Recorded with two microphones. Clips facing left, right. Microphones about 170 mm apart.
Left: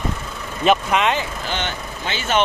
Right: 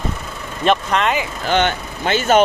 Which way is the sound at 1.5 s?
55° right (ahead or behind).